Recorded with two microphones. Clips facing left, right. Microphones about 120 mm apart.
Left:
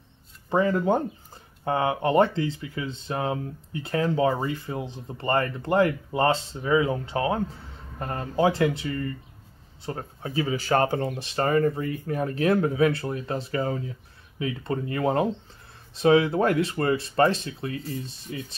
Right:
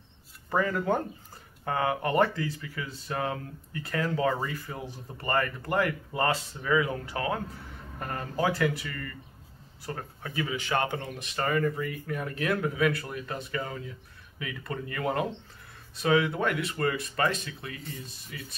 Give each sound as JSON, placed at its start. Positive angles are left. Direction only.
{"t": 0.5, "sound": "speech", "side_deg": 25}